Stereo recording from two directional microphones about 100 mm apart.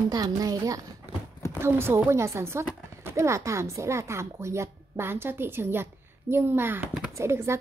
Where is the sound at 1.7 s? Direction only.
20° right (ahead or behind).